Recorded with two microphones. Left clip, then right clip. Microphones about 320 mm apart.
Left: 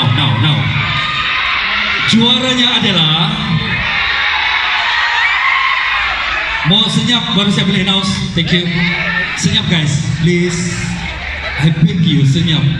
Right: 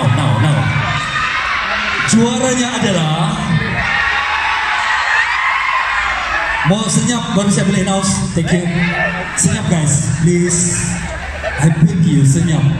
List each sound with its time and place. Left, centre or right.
2.0 s a man's voice: right
6.7 s a man's voice: right